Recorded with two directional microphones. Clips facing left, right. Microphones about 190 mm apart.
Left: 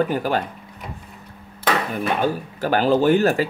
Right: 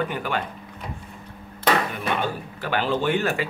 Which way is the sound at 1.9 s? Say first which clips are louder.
Left 5 dB; 40° left (ahead or behind).